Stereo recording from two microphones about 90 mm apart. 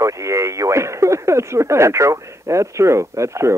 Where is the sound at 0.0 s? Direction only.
35° right (ahead or behind).